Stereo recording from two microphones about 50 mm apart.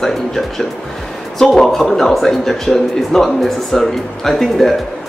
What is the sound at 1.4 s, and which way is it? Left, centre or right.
Speech, centre.